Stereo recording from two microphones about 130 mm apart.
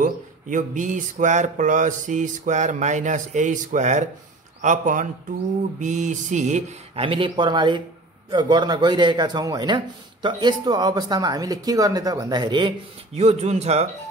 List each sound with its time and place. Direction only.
0.0 s speech: 85° right; by 4.0 s 70° right (ahead or behind)
4.6 s speech: 80° right
5.8 s speech: 70° right (ahead or behind)
7.0 s a man's voice: 40° right (ahead or behind)
13.1 s speech: 55° right (ahead or behind)